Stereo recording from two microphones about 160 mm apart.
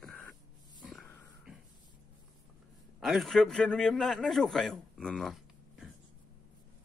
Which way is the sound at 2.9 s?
Centre (ahead or behind).